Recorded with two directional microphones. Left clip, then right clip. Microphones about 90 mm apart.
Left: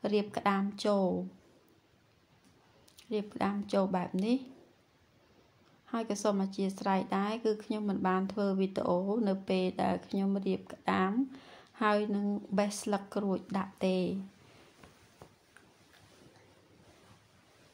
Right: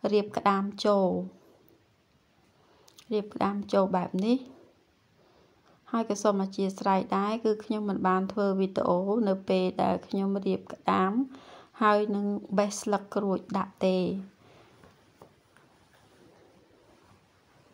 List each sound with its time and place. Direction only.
0.0 s speech: 55° right (ahead or behind)
3.0 s speech: 50° right (ahead or behind)
5.9 s speech: 50° right (ahead or behind)